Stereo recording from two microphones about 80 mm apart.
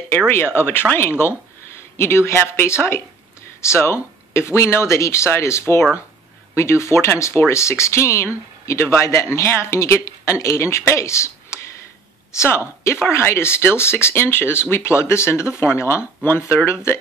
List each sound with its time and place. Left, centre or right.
0.3 s speech: left